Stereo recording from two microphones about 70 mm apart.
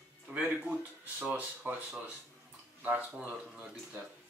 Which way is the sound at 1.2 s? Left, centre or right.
Centre.